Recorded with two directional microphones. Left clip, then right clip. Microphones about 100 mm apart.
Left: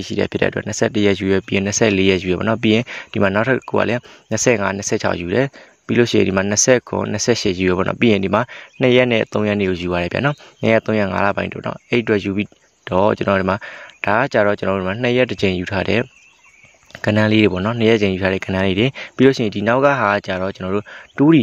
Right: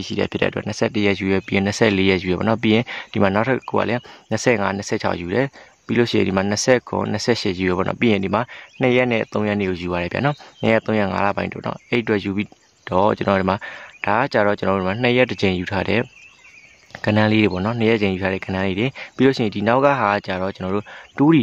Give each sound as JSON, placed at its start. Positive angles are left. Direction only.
{"t": 0.0, "sound": "speech", "side_deg": 20}
{"t": 17.7, "sound": "speech", "side_deg": 45}
{"t": 19.1, "sound": "speech", "side_deg": 30}